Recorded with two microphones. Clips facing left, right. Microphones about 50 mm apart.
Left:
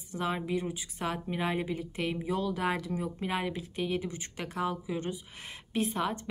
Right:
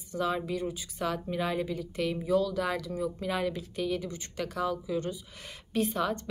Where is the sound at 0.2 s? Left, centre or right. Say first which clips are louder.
Right 1 dB; left.